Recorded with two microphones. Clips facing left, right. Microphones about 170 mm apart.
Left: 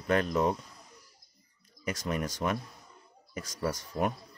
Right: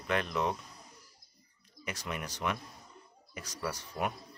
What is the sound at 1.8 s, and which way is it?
Speech, 45° left (ahead or behind).